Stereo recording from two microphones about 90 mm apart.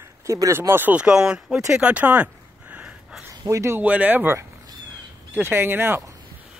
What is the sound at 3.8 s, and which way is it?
Speech, 20° right (ahead or behind).